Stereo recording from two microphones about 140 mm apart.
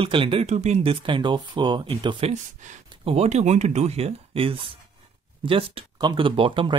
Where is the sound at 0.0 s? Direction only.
40° right (ahead or behind).